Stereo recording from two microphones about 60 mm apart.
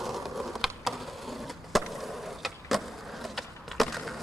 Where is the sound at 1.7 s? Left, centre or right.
Centre.